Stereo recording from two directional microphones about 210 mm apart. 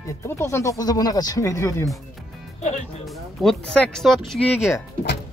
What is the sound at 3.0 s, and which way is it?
Speech, 5° left (ahead or behind).